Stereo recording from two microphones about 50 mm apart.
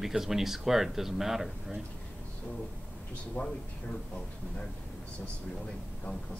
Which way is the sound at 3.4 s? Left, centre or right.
Left.